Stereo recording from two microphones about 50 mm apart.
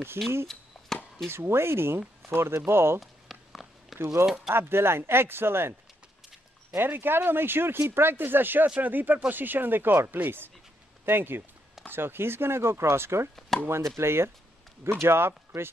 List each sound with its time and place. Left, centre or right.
0.2 s speech: right
3.0 s a sound: centre
4.5 s speech: right
6.8 s speech: right
8.6 s speech: right
13.5 s speech: centre
13.9 s speech: right